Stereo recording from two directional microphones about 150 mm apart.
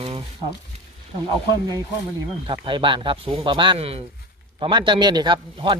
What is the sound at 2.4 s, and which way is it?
A man's voice, 35° right (ahead or behind).